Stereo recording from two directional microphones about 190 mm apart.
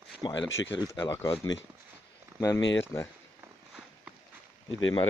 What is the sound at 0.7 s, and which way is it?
Speech, 20° left (ahead or behind).